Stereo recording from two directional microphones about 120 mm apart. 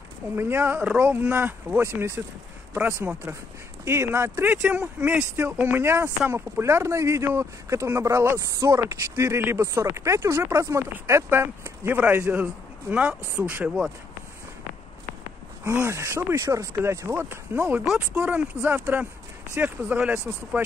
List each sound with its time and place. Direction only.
0.4 s speech: 20° right (ahead or behind)
3.8 s speech: 20° right (ahead or behind)
15.8 s speech: 25° right (ahead or behind)